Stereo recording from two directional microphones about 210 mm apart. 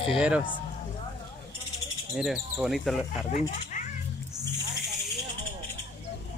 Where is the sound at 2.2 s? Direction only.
Centre (ahead or behind).